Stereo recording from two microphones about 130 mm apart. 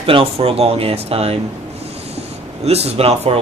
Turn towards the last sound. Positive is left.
turn(degrees=-50)  # may be behind; listen again after turning